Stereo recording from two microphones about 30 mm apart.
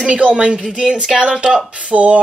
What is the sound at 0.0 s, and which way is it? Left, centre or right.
Speech, right.